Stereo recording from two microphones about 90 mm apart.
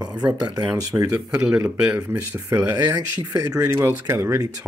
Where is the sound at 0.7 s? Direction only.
40° right (ahead or behind).